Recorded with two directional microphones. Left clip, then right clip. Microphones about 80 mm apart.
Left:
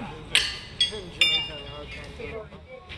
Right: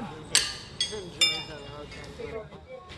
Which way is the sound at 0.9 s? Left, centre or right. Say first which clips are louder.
Left 1 dB; left.